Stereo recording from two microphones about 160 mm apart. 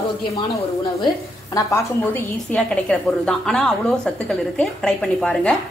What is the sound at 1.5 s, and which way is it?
A woman's voice, 20° left (ahead or behind).